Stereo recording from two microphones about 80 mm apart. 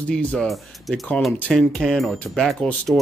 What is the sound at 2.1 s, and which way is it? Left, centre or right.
Speech, centre.